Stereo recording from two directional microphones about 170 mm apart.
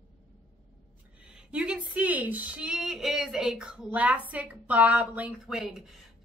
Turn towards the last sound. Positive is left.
turn(degrees=0)  # may be behind; listen again after turning